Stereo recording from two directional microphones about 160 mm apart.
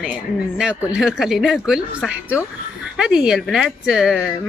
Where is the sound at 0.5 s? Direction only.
5° right (ahead or behind).